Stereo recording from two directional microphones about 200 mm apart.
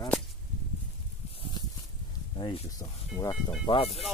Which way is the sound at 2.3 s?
20° left (ahead or behind).